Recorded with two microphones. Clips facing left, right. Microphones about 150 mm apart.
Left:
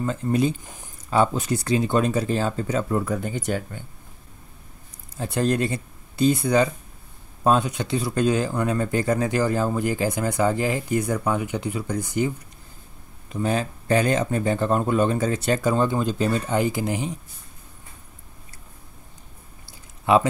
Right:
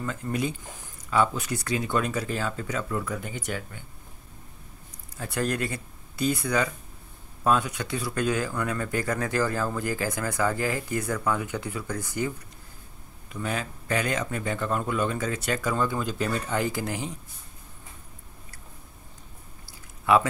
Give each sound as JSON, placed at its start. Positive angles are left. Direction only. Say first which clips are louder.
{"t": 0.0, "sound": "speech", "louder": "left 7 dB", "side_deg": 30}
{"t": 5.1, "sound": "speech", "louder": "left 6 dB", "side_deg": 25}
{"t": 13.3, "sound": "speech", "louder": "left 7 dB", "side_deg": 30}
{"t": 20.1, "sound": "speech", "louder": "left 3 dB", "side_deg": 25}